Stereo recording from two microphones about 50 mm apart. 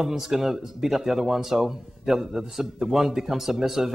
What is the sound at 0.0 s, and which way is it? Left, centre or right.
Speech, centre.